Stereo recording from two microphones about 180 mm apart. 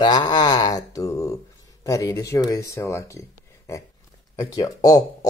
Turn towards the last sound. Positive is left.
turn(degrees=20)  # may be behind; listen again after turning